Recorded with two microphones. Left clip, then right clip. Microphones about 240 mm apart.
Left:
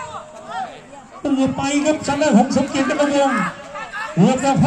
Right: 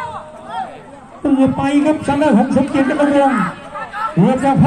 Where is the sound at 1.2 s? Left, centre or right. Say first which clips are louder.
Right 5 dB; left.